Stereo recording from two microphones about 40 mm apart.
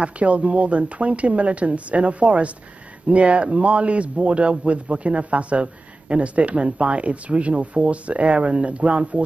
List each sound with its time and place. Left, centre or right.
0.0 s speech: right